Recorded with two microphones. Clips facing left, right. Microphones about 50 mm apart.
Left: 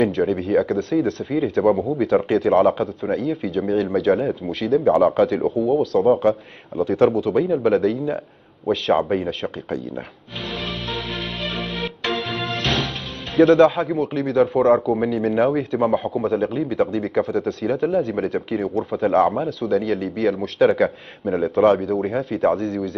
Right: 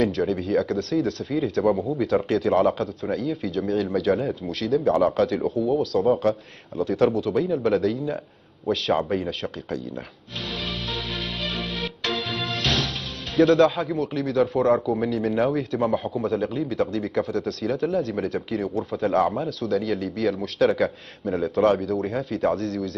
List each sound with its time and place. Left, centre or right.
0.0 s a man's voice: centre
11.4 s music: centre
13.4 s a man's voice: centre